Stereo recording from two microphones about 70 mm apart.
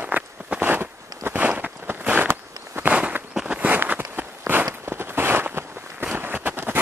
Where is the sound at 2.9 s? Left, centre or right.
Right.